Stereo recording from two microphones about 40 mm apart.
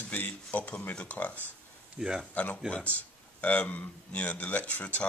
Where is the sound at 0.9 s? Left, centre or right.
Left.